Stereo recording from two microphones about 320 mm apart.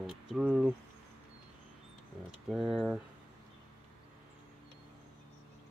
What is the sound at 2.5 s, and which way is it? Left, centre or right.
Speech, centre.